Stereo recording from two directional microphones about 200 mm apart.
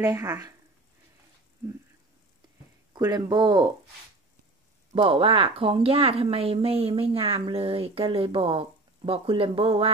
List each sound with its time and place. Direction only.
0.0 s speech: 15° right (ahead or behind)
2.9 s speech: 20° right (ahead or behind)
4.9 s speech: 25° right (ahead or behind)